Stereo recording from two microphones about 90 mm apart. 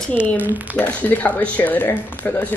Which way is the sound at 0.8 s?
20° left (ahead or behind).